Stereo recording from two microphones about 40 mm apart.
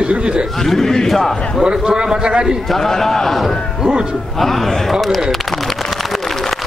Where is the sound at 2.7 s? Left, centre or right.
Centre.